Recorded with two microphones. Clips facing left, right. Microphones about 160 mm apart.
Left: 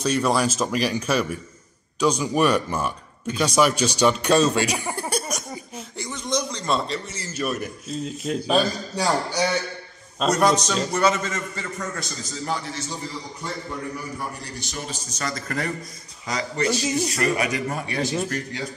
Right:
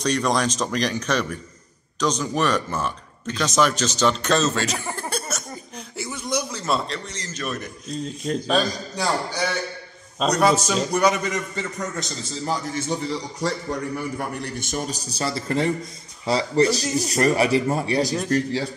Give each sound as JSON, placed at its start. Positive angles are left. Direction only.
{"t": 0.0, "sound": "speech", "side_deg": 5}
{"t": 5.8, "sound": "a man's voice", "side_deg": -5}
{"t": 10.1, "sound": "a man's voice", "side_deg": 0}
{"t": 12.7, "sound": "a man's voice", "side_deg": -60}